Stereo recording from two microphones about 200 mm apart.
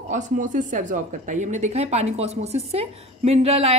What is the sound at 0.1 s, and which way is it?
Speech, 40° right (ahead or behind).